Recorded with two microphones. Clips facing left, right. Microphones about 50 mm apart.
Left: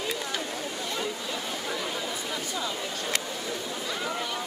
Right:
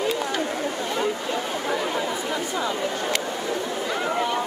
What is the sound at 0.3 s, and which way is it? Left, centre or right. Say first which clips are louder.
Chatter: right 7 dB; right.